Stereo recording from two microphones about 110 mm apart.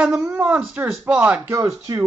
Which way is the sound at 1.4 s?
25° right (ahead or behind).